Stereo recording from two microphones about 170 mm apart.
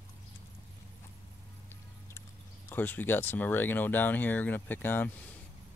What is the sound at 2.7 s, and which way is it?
Speech, 10° left (ahead or behind).